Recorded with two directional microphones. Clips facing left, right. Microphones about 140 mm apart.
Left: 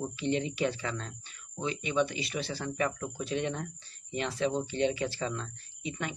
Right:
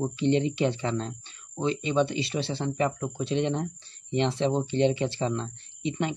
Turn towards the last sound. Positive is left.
turn(degrees=-30)  # may be behind; listen again after turning